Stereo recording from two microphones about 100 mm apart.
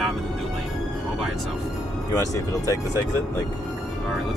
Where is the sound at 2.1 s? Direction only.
35° left (ahead or behind).